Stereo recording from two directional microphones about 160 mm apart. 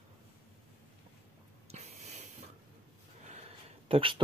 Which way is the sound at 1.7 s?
45° right (ahead or behind).